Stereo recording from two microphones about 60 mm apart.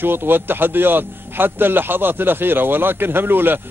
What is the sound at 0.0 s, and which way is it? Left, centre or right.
A man's voice, right.